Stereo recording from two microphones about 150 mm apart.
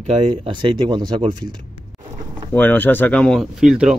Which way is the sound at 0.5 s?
30° right (ahead or behind).